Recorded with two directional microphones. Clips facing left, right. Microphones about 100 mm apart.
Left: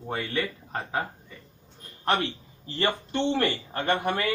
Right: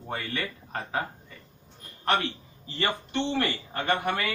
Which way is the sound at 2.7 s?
30° left (ahead or behind).